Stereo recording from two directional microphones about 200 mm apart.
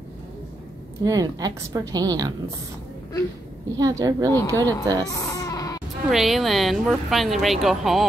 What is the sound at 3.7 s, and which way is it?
A woman's voice, 20° right (ahead or behind).